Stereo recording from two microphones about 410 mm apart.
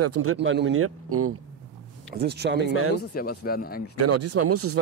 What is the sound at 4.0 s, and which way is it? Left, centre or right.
Speech, right.